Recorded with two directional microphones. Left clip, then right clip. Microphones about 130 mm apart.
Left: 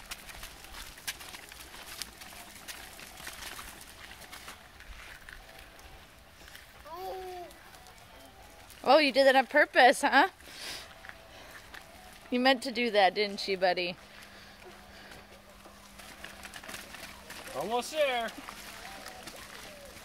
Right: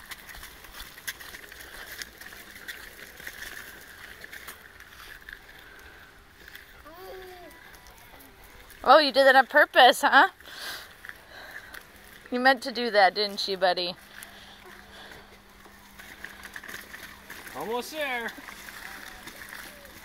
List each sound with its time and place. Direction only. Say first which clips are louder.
8.8 s speech: right 5 dB; 5° left (ahead or behind)
12.3 s speech: right 4 dB; 15° left (ahead or behind)
17.7 s speech: left 2 dB; 60° left (ahead or behind)